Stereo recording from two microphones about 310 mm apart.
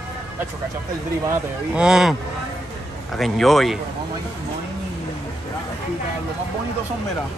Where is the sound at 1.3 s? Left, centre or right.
Centre.